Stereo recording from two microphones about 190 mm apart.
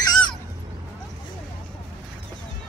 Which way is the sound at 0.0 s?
20° left (ahead or behind).